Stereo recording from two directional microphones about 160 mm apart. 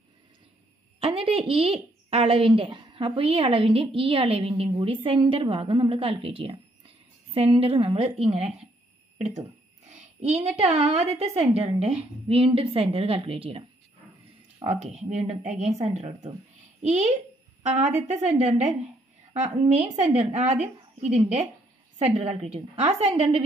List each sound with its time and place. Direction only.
0.9 s a woman's voice: 35° right (ahead or behind)
9.8 s a woman's voice: 45° right (ahead or behind)
14.7 s a woman's voice: 45° right (ahead or behind)
17.7 s a woman's voice: 45° right (ahead or behind)